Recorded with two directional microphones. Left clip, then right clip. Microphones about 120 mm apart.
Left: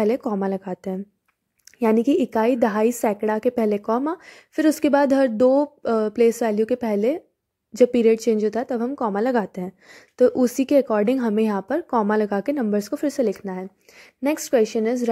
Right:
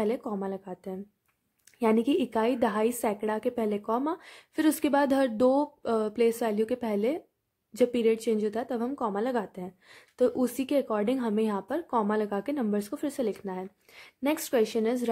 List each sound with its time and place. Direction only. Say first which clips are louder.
0.0 s a woman's voice: left 8 dB; 45° left (ahead or behind)
1.8 s a woman's voice: left 6 dB; 35° left (ahead or behind)
9.1 s a woman's voice: left 8 dB; 45° left (ahead or behind)